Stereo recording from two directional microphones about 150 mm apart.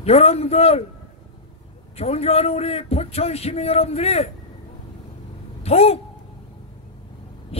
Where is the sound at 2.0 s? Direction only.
45° left (ahead or behind).